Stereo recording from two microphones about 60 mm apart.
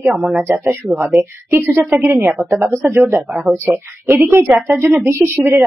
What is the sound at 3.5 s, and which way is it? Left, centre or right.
Speech, right.